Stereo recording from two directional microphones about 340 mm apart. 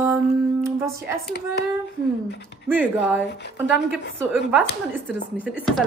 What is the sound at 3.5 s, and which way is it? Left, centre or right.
Speech, centre.